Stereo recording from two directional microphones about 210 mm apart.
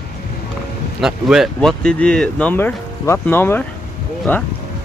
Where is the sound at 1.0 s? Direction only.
Centre (ahead or behind).